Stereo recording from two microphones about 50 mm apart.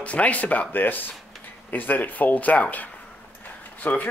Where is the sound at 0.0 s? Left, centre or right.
Left.